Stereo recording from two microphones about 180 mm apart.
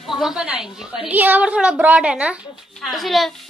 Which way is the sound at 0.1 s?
Centre (ahead or behind).